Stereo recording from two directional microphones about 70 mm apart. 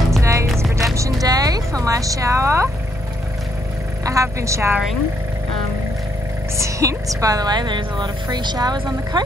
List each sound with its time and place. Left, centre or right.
0.2 s music: right
1.2 s vehicle: right
1.7 s a woman's voice: right
4.0 s speech: right
6.6 s a woman's voice: right